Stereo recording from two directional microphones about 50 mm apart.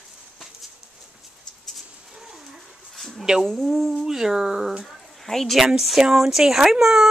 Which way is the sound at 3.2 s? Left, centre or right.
Centre.